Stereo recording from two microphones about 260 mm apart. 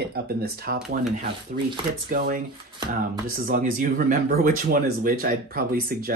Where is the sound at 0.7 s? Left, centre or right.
Right.